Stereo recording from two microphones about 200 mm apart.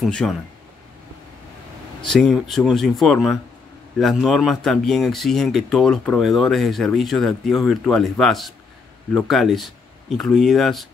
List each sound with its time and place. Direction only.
0.0 s speech: centre (ahead or behind)
2.0 s speech: centre (ahead or behind)